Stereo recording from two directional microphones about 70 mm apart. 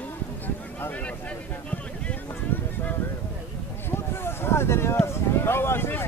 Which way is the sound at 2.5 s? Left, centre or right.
Left.